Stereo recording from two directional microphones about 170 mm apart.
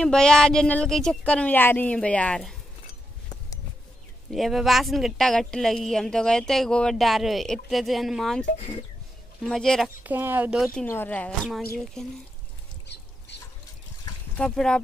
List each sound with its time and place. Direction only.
0.0 s a woman's voice: 5° left (ahead or behind)
4.3 s a woman's voice: centre (ahead or behind)
10.0 s a woman's voice: 10° right (ahead or behind)
12.8 s duck: 85° left
14.3 s a woman's voice: 5° left (ahead or behind)